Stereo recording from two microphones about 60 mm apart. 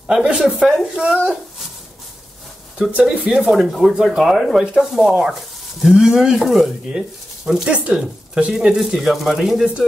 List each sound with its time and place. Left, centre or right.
0.2 s sanding: centre
2.8 s speech: centre
4.2 s sanding: centre